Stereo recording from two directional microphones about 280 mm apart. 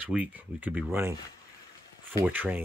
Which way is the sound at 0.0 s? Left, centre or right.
Centre.